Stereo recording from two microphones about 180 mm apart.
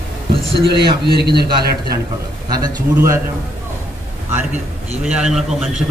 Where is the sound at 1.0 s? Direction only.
65° right (ahead or behind).